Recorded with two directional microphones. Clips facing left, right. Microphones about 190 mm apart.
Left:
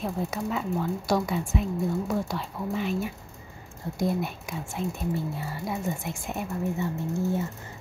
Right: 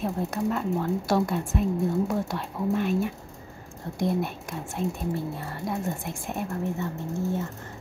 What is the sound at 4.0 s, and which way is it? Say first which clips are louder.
A woman's voice: right 1 dB; centre (ahead or behind).